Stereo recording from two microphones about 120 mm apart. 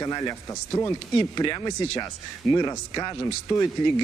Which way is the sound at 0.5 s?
20° left (ahead or behind).